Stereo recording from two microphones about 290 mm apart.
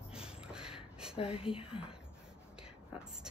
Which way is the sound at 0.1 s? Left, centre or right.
Centre.